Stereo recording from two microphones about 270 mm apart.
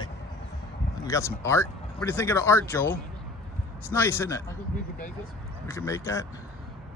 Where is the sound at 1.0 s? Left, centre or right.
Centre.